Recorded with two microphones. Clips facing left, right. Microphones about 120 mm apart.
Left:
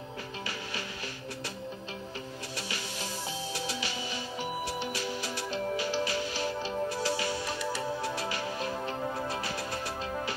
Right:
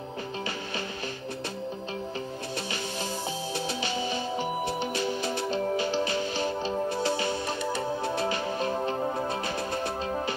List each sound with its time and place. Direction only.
3.6 s music: 25° right (ahead or behind)